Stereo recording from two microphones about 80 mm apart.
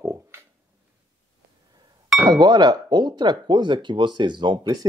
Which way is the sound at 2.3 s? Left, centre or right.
Right.